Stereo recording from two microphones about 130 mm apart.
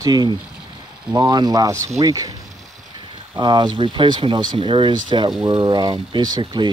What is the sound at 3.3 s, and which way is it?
Speech, 35° right (ahead or behind).